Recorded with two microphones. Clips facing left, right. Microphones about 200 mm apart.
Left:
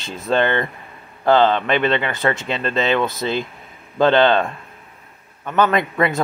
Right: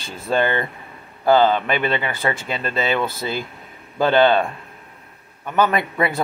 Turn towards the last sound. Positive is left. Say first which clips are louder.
# left 2 dB
turn(degrees=-10)  # may be behind; listen again after turning